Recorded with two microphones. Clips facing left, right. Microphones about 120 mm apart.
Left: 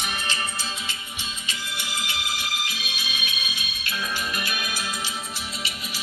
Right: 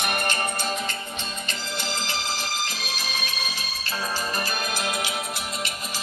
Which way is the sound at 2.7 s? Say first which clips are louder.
Right 3 dB; 40° right (ahead or behind).